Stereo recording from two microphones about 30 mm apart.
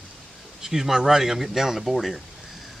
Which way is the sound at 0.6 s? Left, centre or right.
Centre.